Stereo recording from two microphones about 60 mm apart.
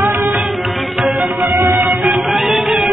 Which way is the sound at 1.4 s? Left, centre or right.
Right.